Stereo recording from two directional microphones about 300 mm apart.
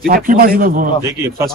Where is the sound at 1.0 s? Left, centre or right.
Centre.